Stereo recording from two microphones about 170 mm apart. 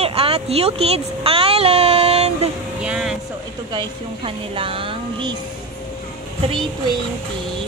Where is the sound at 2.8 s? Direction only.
5° right (ahead or behind).